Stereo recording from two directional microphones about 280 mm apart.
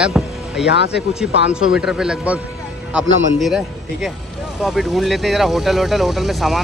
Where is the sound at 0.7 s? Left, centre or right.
Left.